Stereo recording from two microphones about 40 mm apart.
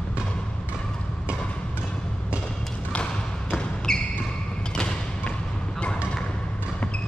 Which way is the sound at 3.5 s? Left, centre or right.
Centre.